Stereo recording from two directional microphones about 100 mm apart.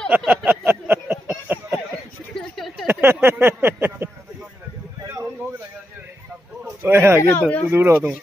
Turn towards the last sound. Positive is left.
turn(degrees=-20)  # may be behind; listen again after turning